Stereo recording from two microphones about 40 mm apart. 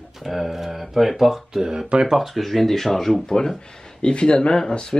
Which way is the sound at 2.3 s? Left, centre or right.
Centre.